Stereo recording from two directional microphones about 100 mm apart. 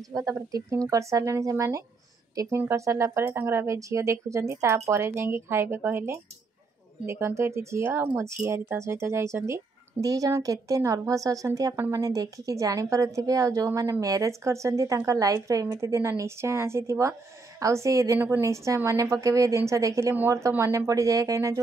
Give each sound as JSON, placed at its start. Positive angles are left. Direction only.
{"t": 0.1, "sound": "speech", "side_deg": -35}